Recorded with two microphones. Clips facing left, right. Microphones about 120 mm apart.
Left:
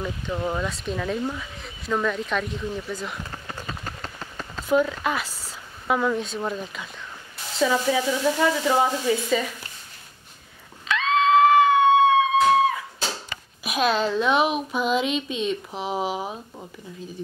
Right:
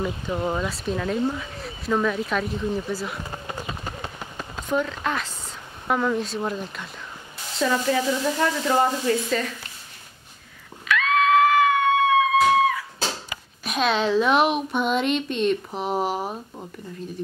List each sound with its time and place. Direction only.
0.0 s speech: 15° right (ahead or behind)
0.7 s a woman's voice: centre (ahead or behind)
3.3 s run: 15° right (ahead or behind)
4.6 s a woman's voice: 5° left (ahead or behind)
10.9 s screaming: 25° left (ahead or behind)
13.7 s a woman's voice: 5° left (ahead or behind)